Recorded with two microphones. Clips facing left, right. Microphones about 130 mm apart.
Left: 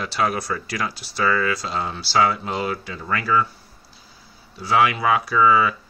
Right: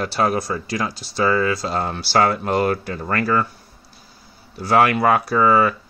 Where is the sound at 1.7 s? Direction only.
50° right (ahead or behind).